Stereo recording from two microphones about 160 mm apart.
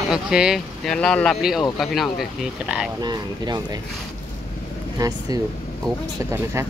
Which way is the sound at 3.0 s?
25° right (ahead or behind).